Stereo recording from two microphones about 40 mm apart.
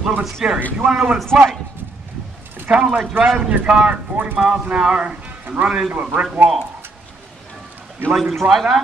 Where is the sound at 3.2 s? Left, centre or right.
Right.